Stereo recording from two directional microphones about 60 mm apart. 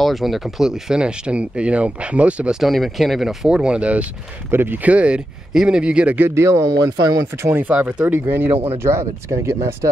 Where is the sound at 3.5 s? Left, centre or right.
Centre.